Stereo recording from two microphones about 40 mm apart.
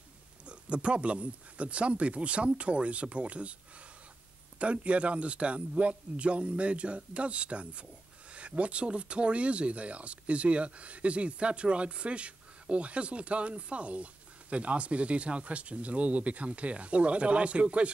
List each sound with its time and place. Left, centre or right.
0.5 s speech: right
4.6 s speech: right